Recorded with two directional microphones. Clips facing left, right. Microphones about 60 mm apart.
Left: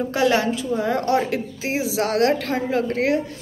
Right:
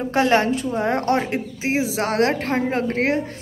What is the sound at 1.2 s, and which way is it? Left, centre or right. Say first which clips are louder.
A woman's voice: even; right.